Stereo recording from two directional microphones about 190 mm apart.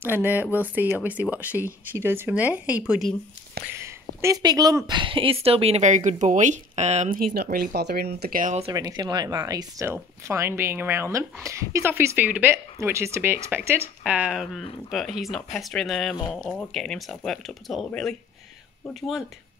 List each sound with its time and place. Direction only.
0.0 s a woman's voice: 10° right (ahead or behind)
3.7 s speech: 15° right (ahead or behind); by 8.6 s 45° right (ahead or behind)
8.6 s a woman's voice: 20° right (ahead or behind); by 19.2 s centre (ahead or behind)